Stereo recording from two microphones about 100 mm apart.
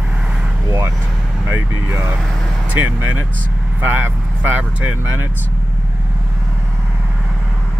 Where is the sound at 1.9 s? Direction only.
20° right (ahead or behind).